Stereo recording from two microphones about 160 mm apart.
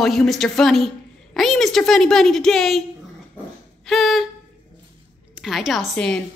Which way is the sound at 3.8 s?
Centre (ahead or behind).